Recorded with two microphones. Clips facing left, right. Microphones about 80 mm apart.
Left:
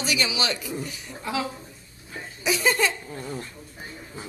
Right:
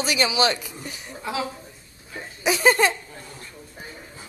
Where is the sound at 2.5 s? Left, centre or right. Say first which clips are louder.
Right 5 dB; right.